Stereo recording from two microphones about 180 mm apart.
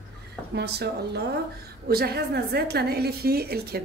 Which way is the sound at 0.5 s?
65° right (ahead or behind).